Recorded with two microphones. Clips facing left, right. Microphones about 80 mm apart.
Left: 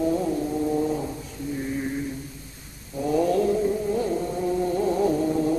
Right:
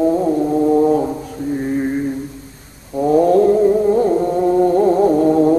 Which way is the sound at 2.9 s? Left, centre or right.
Right.